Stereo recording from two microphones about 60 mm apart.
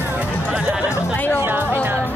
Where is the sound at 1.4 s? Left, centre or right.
Right.